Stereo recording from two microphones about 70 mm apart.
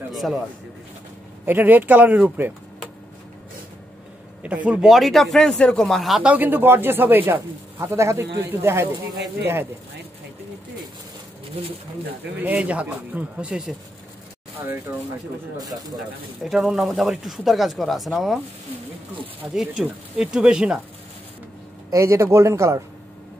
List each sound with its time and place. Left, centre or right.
0.1 s speech: centre
1.4 s speech: right
4.4 s speech: centre
4.8 s speech: centre
6.2 s speech: right
7.3 s speech: right
12.4 s speech: right
16.4 s speech: centre
19.5 s speech: centre
21.9 s speech: right